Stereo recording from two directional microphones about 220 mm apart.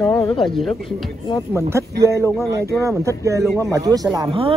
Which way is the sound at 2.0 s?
15° right (ahead or behind).